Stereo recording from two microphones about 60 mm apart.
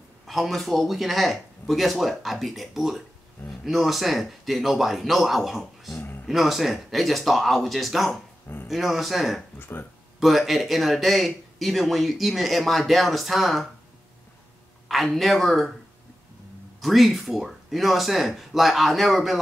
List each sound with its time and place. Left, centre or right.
0.3 s speech: centre
5.9 s a sound: left
6.2 s speech: centre
9.6 s speech: left
10.2 s speech: centre
14.9 s speech: centre
16.8 s speech: centre